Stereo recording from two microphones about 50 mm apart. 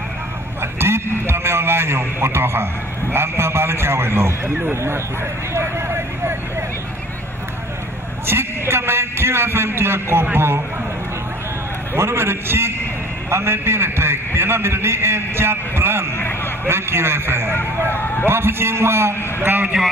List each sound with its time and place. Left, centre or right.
0.6 s a man's voice: right
5.5 s vehicle: right
8.3 s a man's voice: right
11.9 s a man's voice: right